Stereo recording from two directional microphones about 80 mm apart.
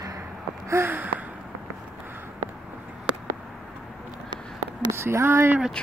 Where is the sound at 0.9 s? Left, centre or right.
Right.